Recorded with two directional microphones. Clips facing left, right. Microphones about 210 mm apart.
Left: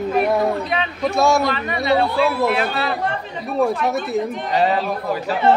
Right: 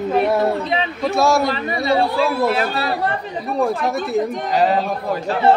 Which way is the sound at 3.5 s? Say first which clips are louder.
Left 1 dB; centre (ahead or behind).